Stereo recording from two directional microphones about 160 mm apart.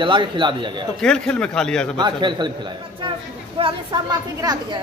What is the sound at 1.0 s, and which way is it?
Speech, 5° left (ahead or behind).